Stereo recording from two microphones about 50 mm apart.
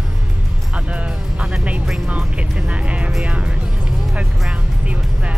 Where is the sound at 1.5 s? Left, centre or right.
Right.